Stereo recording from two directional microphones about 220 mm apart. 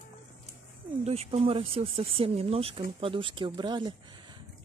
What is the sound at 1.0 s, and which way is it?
Speech, 25° right (ahead or behind).